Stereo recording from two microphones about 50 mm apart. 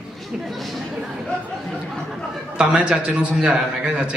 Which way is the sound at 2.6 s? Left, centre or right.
Right.